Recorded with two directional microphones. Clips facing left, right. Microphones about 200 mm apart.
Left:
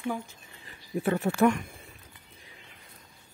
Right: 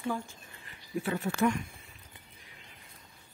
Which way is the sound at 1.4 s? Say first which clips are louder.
Left 4 dB; 60° left (ahead or behind).